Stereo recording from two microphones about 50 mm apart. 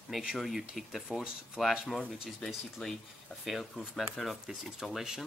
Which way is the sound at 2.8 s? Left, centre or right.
Centre.